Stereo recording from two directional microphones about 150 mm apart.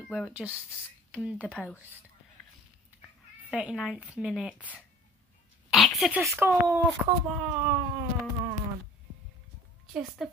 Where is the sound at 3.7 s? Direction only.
5° left (ahead or behind).